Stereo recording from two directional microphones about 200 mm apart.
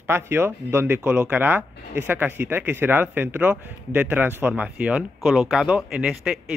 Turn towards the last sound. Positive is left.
turn(degrees=-5)  # may be behind; listen again after turning